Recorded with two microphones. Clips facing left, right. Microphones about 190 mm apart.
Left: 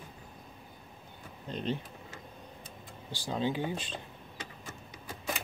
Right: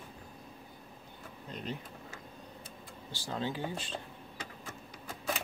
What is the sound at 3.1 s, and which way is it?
Speech, 15° left (ahead or behind).